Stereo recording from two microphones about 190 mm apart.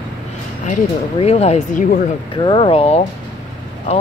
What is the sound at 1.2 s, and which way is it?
Speech, 35° left (ahead or behind).